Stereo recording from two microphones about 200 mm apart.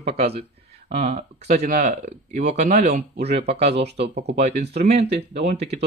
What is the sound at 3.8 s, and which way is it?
Speech, 60° right (ahead or behind).